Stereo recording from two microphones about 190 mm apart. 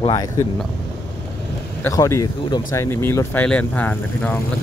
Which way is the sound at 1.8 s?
15° left (ahead or behind).